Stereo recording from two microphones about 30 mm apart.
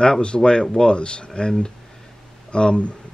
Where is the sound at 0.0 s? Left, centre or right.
Left.